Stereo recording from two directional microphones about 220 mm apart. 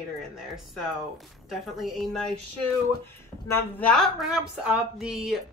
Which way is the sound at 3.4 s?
10° left (ahead or behind).